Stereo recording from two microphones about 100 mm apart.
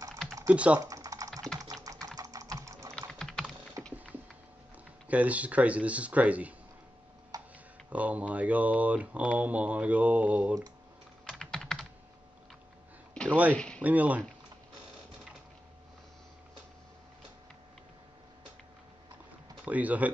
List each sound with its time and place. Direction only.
0.5 s speech: 10° right (ahead or behind)
0.7 s typing: 35° right (ahead or behind)
2.9 s typing: 5° left (ahead or behind)
3.9 s a sound: 15° right (ahead or behind)
5.0 s speech: 15° right (ahead or behind)
7.3 s tick-tock: 40° right (ahead or behind)
7.9 s speech: 15° right (ahead or behind)
11.2 s computer keyboard: 5° left (ahead or behind)
13.1 s a sound: 10° left (ahead or behind)
13.5 s speech: 10° left (ahead or behind)
13.8 s speech: 15° right (ahead or behind)
19.6 s speech: 15° right (ahead or behind)